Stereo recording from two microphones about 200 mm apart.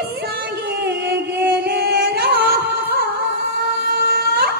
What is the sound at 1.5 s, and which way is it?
Music, 55° right (ahead or behind).